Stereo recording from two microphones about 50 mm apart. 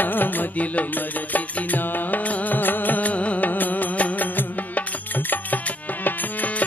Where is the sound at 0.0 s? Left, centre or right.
Left.